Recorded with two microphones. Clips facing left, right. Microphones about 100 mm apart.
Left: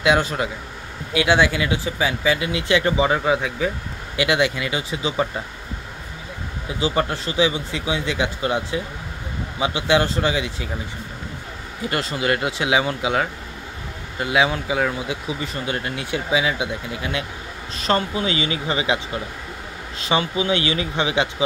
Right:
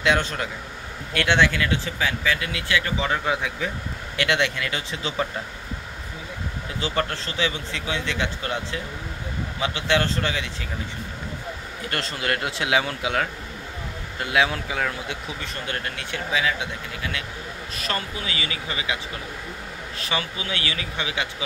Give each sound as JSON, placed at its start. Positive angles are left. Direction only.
{"t": 0.0, "sound": "speech", "side_deg": 10}
{"t": 3.3, "sound": "speech", "side_deg": 0}
{"t": 6.8, "sound": "speech", "side_deg": 15}
{"t": 11.9, "sound": "speech", "side_deg": 5}
{"t": 17.7, "sound": "speech", "side_deg": 30}
{"t": 20.0, "sound": "speech", "side_deg": 20}